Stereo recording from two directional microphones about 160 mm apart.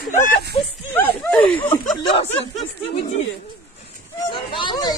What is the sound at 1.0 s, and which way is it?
Snicker, 5° left (ahead or behind).